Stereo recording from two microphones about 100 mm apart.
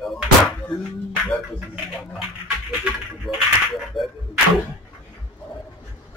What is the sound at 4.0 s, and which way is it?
Whip, centre (ahead or behind).